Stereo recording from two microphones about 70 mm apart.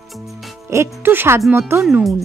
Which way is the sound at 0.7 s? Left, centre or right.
Right.